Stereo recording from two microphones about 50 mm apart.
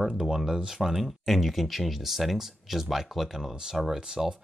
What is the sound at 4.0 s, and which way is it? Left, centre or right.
Speech, centre.